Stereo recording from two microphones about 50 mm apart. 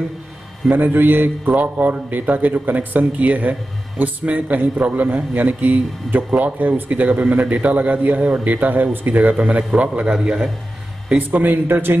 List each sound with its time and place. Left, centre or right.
0.7 s a man's voice: right
1.5 s a man's voice: right; by 10.5 s centre
11.1 s a man's voice: right